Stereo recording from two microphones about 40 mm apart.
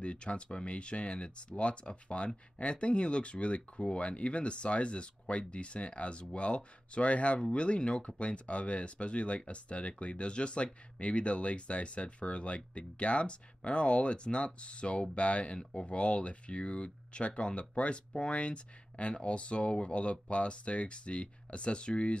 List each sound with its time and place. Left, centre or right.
0.0 s speech: left